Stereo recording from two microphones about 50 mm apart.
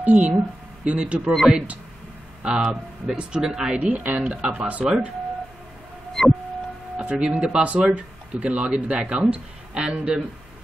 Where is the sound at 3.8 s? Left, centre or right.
Right.